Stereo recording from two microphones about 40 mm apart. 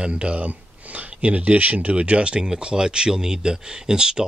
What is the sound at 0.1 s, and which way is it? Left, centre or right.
Speech, right.